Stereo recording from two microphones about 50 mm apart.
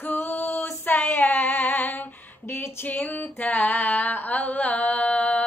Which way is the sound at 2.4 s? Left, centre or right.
Left.